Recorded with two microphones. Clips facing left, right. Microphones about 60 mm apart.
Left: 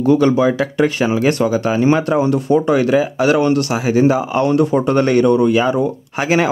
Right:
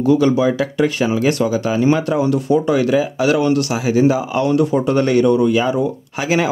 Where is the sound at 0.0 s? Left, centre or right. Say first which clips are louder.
Left 1 dB; left.